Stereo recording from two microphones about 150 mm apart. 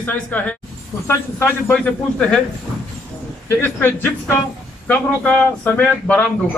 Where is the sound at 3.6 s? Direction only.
15° left (ahead or behind).